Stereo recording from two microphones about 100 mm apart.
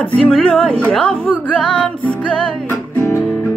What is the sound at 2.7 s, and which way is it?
Music, 25° left (ahead or behind).